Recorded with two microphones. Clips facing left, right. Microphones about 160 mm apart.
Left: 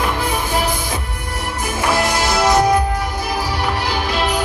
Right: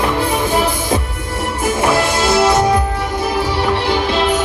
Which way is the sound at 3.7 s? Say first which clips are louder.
Right 5 dB; 30° right (ahead or behind).